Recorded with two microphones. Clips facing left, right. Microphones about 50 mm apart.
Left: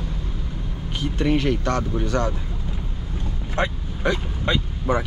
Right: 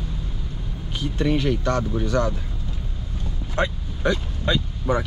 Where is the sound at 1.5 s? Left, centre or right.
Left.